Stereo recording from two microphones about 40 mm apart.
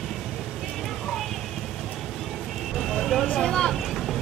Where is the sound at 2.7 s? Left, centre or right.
Centre.